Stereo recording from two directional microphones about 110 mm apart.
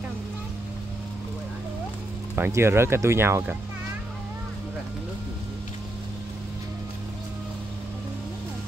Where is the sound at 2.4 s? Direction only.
20° right (ahead or behind).